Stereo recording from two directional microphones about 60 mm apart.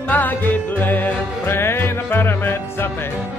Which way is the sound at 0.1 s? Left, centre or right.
Left.